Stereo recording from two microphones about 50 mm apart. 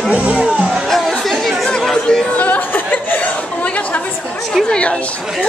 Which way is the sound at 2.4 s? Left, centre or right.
Left.